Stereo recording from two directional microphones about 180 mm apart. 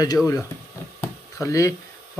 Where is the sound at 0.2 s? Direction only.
Centre (ahead or behind).